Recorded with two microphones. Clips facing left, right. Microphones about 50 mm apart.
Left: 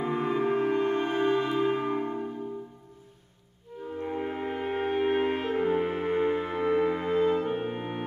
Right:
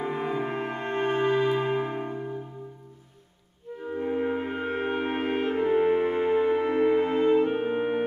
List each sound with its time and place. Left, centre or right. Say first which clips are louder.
0.0 s music: left 2 dB; centre
0.8 s music: right 1 dB; right
1.5 s music: even; centre
4.0 s brass instrument: right 4 dB; centre
5.6 s music: right 7 dB; centre